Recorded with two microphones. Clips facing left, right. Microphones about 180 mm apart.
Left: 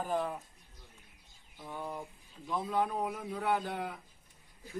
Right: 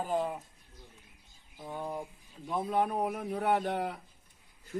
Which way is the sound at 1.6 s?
20° right (ahead or behind).